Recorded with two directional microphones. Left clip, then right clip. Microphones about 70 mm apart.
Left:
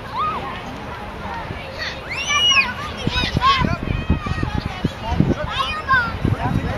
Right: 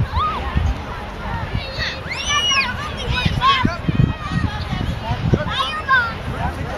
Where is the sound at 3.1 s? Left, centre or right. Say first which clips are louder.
Even; centre.